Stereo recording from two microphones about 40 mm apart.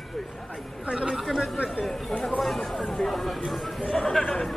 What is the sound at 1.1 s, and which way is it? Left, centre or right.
Chatter, centre.